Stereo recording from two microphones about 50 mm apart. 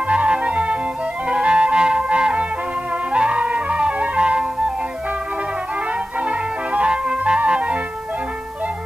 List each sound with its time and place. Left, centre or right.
0.1 s music: right
6.2 s music: right